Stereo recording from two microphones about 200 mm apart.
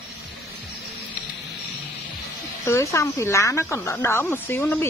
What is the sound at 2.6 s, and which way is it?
Speech, 15° left (ahead or behind).